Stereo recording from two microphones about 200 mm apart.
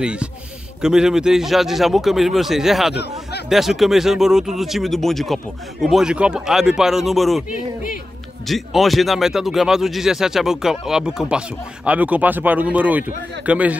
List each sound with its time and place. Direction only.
0.0 s speech: 5° right (ahead or behind)
7.5 s speech: 40° left (ahead or behind)
8.5 s a man's voice: centre (ahead or behind)